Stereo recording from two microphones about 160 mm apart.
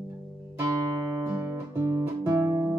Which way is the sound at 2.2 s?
20° right (ahead or behind).